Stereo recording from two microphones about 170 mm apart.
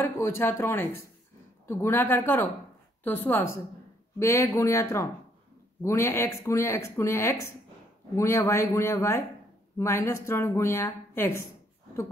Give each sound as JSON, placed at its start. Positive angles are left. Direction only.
{"t": 0.0, "sound": "speech", "side_deg": 15}